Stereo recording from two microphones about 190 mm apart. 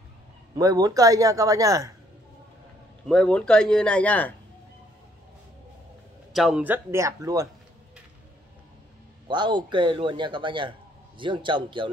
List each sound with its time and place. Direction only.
0.6 s a man's voice: 20° right (ahead or behind)
3.1 s speech: 5° left (ahead or behind)
6.3 s a man's voice: 5° right (ahead or behind)
9.3 s a man's voice: 25° right (ahead or behind)